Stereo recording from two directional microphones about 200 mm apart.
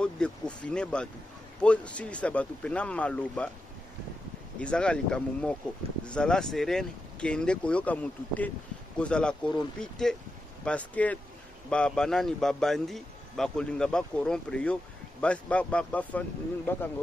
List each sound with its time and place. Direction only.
0.0 s a man's voice: 5° left (ahead or behind)
4.6 s a man's voice: 5° left (ahead or behind)